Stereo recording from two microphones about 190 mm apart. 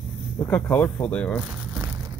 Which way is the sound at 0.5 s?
10° left (ahead or behind).